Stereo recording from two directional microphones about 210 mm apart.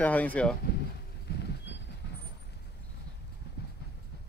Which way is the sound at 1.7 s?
55° left (ahead or behind).